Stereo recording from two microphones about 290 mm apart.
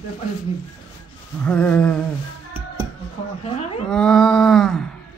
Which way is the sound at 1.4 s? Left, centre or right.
Centre.